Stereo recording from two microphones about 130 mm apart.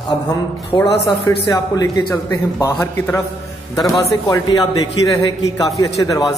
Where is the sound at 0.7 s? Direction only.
35° left (ahead or behind).